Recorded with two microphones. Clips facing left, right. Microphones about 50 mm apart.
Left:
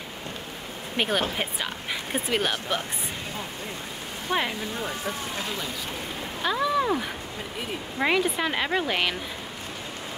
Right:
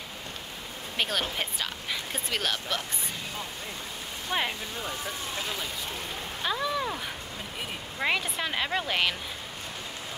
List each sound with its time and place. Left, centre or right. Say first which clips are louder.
0.9 s speech: left 4 dB; centre
4.3 s speech: left 3 dB; centre
6.4 s speech: left 5 dB; centre
8.0 s speech: left 5 dB; centre